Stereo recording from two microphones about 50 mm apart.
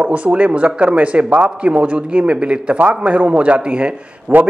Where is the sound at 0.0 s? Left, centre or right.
Right.